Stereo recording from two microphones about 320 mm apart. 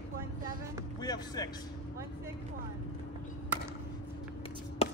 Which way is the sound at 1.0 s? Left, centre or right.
Centre.